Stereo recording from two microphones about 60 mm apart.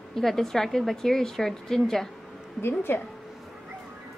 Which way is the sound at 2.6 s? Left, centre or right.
Left.